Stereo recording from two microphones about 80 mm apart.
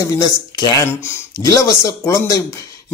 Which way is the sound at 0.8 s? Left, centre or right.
Left.